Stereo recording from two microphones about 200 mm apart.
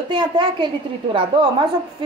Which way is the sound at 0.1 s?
25° right (ahead or behind).